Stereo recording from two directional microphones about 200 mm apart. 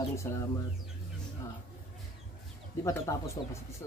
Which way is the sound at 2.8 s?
15° left (ahead or behind).